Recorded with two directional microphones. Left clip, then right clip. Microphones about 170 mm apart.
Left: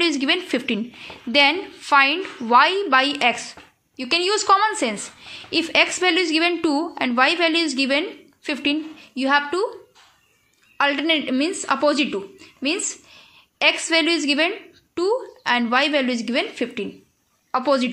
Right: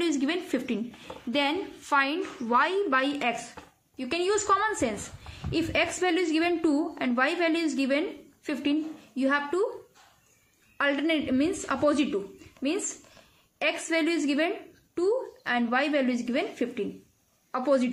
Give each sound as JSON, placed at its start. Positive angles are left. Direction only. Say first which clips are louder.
{"t": 0.0, "sound": "a woman's voice", "louder": "left 8 dB", "side_deg": 15}
{"t": 10.8, "sound": "a woman's voice", "louder": "left 7 dB", "side_deg": 20}